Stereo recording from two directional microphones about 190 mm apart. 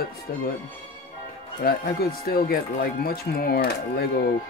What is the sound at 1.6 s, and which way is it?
Speech, 55° left (ahead or behind).